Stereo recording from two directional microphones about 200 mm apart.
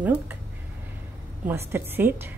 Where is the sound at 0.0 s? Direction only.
10° right (ahead or behind).